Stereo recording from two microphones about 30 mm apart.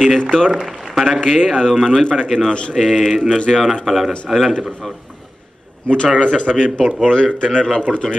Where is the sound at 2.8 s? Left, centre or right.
Centre.